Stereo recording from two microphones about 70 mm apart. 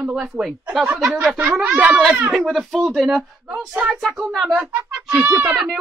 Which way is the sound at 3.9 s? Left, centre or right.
Centre.